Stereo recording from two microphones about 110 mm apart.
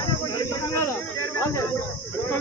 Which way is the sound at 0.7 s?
25° left (ahead or behind).